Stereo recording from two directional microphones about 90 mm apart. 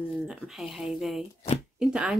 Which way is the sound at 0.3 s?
5° right (ahead or behind).